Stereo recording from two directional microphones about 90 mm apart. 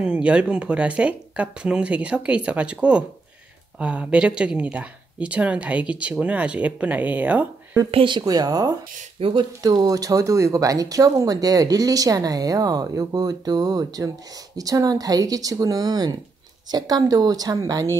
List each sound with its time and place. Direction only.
0.0 s speech: 10° right (ahead or behind)
7.9 s speech: 70° right (ahead or behind)
8.2 s speech: 45° right (ahead or behind)
9.2 s speech: 90° right
9.6 s speech: 45° right (ahead or behind)